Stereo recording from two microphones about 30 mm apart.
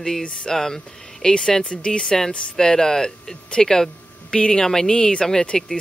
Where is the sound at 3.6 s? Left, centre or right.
Centre.